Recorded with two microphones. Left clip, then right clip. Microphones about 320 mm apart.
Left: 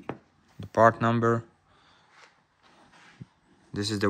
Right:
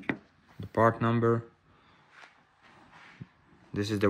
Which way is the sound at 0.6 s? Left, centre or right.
Centre.